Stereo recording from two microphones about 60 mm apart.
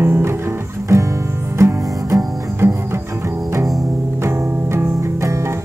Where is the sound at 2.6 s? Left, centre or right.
Right.